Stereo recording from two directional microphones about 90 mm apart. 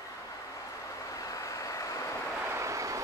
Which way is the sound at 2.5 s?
35° right (ahead or behind).